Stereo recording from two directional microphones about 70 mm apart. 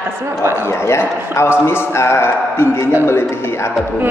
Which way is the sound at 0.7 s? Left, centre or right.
Left.